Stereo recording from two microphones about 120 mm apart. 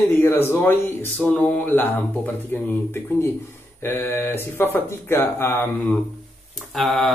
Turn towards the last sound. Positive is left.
turn(degrees=0)  # may be behind; listen again after turning